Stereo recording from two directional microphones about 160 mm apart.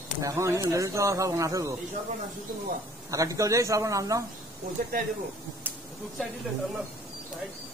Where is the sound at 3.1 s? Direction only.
20° right (ahead or behind).